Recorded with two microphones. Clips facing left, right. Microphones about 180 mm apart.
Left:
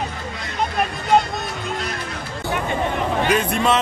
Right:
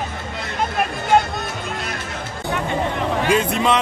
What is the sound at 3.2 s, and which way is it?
Speech, 25° right (ahead or behind).